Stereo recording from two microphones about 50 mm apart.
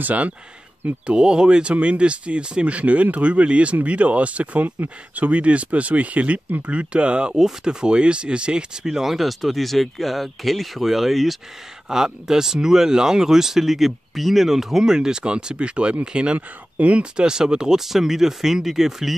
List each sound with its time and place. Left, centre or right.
0.0 s speech: right
1.0 s speech: centre
4.6 s speech: right
5.1 s speech: right; by 19.1 s centre